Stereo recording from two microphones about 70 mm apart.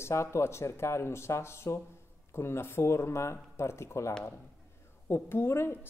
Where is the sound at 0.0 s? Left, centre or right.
Left.